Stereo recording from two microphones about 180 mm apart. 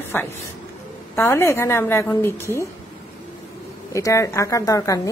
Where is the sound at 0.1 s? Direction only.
10° left (ahead or behind).